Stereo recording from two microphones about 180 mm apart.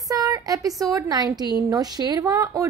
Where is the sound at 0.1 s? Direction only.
20° right (ahead or behind).